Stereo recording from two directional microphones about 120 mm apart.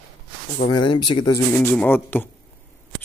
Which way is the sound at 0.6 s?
40° left (ahead or behind).